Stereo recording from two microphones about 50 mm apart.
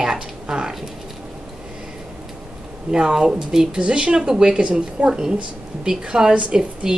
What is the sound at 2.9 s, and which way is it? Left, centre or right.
A woman's voice, centre.